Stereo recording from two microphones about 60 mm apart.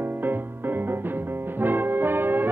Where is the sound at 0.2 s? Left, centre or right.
Right.